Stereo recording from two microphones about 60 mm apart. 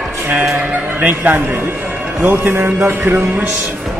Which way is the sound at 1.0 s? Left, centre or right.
Right.